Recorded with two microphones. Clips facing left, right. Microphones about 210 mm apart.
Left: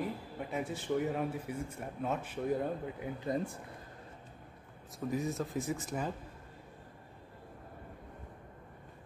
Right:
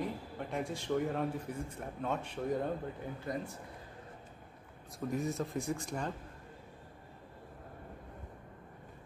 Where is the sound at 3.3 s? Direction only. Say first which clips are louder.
Left 4 dB; 25° left (ahead or behind).